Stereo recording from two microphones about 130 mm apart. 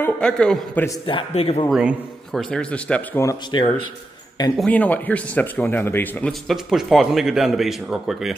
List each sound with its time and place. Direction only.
0.0 s speech: 5° left (ahead or behind)
1.0 s a man's voice: 45° left (ahead or behind)
1.7 s a man's voice: 5° right (ahead or behind)
2.5 s speech: 5° left (ahead or behind)
3.5 s speech: 35° left (ahead or behind)
4.6 s speech: 10° left (ahead or behind)
6.4 s a man's voice: 5° right (ahead or behind)